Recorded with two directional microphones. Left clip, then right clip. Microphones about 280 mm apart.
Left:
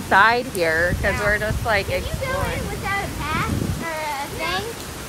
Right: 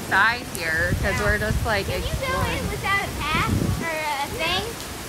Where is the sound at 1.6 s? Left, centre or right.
Centre.